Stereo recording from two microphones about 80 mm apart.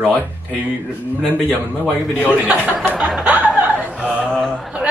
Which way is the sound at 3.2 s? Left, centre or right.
Centre.